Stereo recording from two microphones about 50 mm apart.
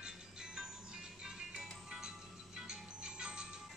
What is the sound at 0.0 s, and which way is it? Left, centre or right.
Music, centre.